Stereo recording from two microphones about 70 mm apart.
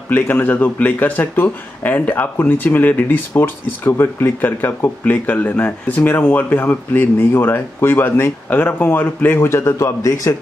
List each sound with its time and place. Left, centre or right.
0.1 s speech: left
9.4 s a man's voice: left